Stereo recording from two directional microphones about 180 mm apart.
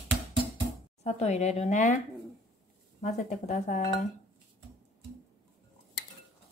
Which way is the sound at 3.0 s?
40° left (ahead or behind).